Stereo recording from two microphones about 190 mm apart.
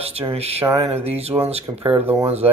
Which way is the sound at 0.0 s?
30° right (ahead or behind).